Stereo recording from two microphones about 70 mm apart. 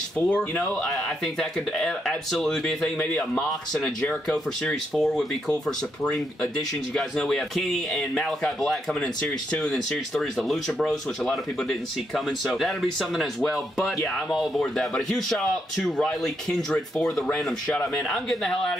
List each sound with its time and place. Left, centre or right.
0.2 s speech: centre
3.0 s speech: centre
3.4 s speech: centre
4.9 s speech: centre
5.5 s speech: centre